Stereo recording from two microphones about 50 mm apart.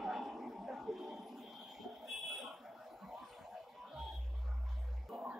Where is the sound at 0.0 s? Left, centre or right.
Centre.